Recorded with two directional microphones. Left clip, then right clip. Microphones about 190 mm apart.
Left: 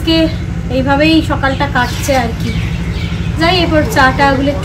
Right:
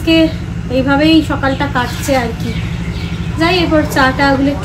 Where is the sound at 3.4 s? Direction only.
5° left (ahead or behind).